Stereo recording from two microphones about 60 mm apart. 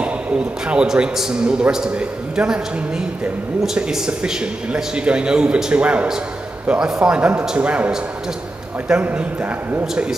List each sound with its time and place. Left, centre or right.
0.0 s a man's voice: centre
3.6 s a man's voice: centre; by 10.0 s right